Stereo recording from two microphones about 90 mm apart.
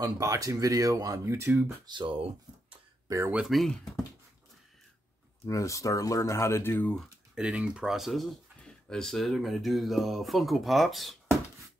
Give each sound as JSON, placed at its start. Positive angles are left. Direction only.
{"t": 0.0, "sound": "speech", "side_deg": -40}
{"t": 1.9, "sound": "speech", "side_deg": -70}
{"t": 3.1, "sound": "speech", "side_deg": -45}
{"t": 3.4, "sound": "speech", "side_deg": 0}
{"t": 5.4, "sound": "speech", "side_deg": 35}
{"t": 7.3, "sound": "speech", "side_deg": -10}